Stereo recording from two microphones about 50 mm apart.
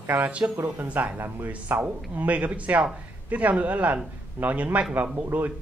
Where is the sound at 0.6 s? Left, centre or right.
Right.